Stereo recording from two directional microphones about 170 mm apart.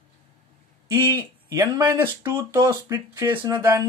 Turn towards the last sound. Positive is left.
turn(degrees=-20)  # may be behind; listen again after turning